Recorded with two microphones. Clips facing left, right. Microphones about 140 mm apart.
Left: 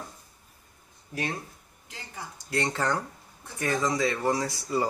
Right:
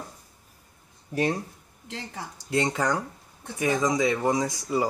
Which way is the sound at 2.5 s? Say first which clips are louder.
Right 3 dB; 15° right (ahead or behind).